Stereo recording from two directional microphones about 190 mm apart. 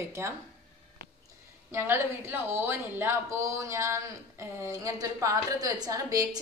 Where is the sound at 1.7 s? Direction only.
15° right (ahead or behind).